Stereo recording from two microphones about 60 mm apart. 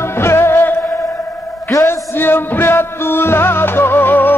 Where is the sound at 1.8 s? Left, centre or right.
Left.